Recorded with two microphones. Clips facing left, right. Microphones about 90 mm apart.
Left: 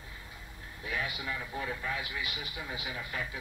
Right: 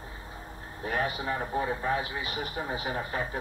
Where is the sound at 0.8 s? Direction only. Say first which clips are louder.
Right 6 dB; 40° right (ahead or behind).